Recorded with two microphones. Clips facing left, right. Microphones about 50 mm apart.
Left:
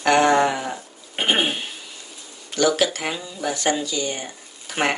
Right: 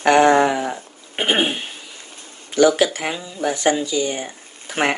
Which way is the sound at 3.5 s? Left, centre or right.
Right.